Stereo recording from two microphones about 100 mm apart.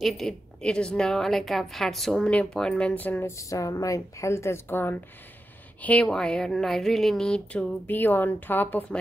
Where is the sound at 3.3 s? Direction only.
35° left (ahead or behind).